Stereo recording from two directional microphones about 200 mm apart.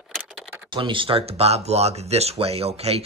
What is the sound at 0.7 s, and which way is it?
Speech, 25° right (ahead or behind).